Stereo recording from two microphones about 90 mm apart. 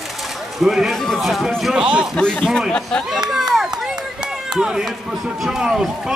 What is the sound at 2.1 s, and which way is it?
Speech, 10° left (ahead or behind).